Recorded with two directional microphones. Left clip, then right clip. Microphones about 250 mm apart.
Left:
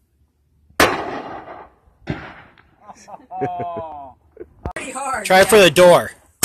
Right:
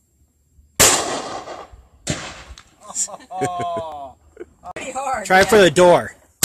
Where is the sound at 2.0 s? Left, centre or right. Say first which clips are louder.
Right 3 dB; right.